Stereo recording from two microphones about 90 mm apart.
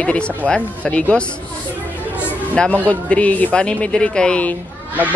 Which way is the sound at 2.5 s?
10° left (ahead or behind).